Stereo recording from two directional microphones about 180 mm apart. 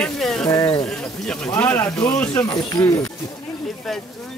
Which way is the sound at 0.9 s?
5° left (ahead or behind).